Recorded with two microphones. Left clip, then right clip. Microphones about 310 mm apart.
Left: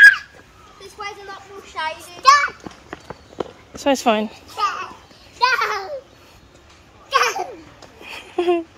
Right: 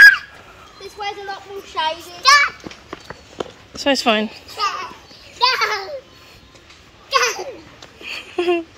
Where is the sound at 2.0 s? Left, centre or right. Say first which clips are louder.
Even; left.